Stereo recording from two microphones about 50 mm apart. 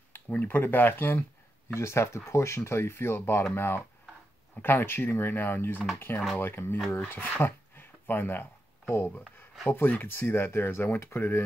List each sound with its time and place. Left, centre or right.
0.3 s speech: left
1.7 s speech: left
7.3 s a sound: left
9.7 s speech: left